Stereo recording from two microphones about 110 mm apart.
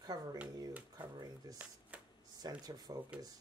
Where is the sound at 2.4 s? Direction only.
35° right (ahead or behind).